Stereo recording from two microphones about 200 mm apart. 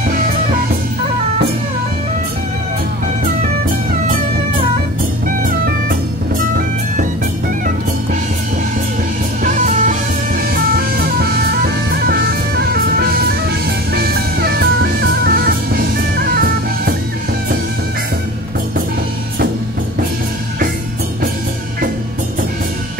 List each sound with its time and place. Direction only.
9.4 s music: 35° right (ahead or behind)
11.1 s music: 50° right (ahead or behind)